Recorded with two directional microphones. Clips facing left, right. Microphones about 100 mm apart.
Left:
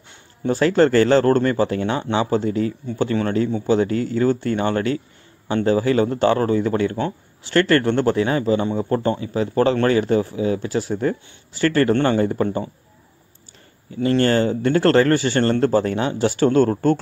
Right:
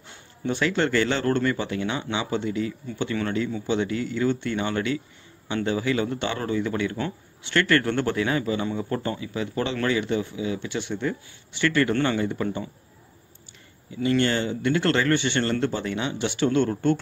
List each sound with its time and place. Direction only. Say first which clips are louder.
0.4 s a man's voice: left 8 dB; 40° left (ahead or behind)
13.9 s a man's voice: left 5 dB; 40° left (ahead or behind)